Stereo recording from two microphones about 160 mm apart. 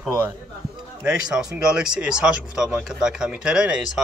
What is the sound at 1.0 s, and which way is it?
Speech, 5° right (ahead or behind).